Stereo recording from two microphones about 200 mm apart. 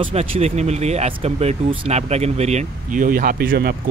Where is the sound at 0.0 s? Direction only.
30° right (ahead or behind).